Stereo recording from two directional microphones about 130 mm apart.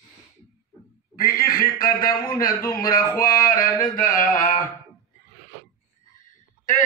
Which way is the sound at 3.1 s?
90° left.